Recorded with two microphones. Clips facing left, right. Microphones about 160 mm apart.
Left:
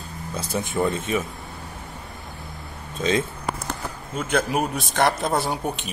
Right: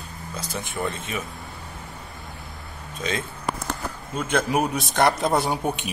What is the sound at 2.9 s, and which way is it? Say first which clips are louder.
Speech: left 6 dB; 30° left (ahead or behind).